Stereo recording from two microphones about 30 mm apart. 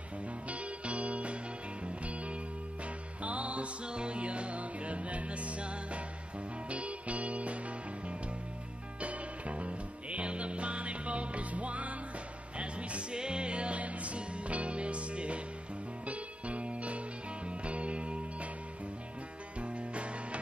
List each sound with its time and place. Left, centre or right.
0.2 s music: right
3.8 s music: right
13.1 s music: right
19.6 s music: right